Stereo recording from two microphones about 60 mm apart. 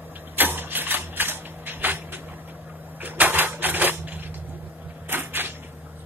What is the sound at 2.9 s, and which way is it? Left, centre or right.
Typewriter, right.